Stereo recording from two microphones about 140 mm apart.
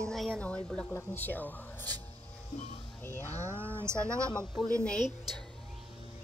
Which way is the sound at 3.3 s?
15° right (ahead or behind).